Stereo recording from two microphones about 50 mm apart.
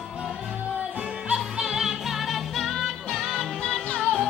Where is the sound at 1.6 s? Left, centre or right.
Centre.